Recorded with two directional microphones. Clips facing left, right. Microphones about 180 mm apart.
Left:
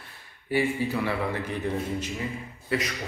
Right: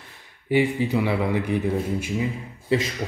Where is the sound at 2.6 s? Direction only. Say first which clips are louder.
Right 6 dB; 25° right (ahead or behind).